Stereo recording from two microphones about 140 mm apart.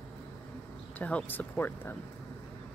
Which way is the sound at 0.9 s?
10° left (ahead or behind).